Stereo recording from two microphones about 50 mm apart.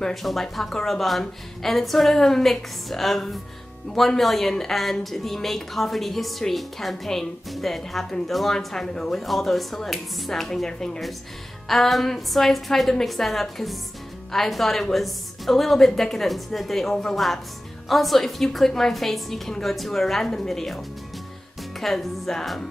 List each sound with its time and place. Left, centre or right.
0.1 s a woman's voice: centre